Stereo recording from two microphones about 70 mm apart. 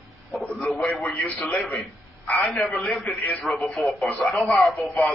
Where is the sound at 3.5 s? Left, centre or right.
Left.